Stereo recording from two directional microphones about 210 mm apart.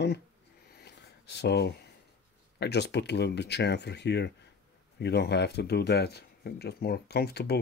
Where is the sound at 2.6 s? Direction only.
55° left (ahead or behind).